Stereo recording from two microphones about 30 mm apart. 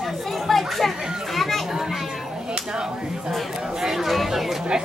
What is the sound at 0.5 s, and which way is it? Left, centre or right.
Children playing, centre.